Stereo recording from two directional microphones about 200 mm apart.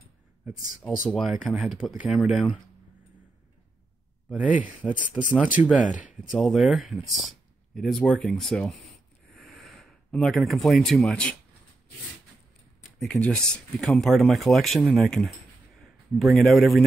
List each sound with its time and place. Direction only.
1.0 s speech: centre (ahead or behind)
4.3 s speech: 5° right (ahead or behind)
9.3 s a sound: centre (ahead or behind)
13.0 s speech: 5° left (ahead or behind)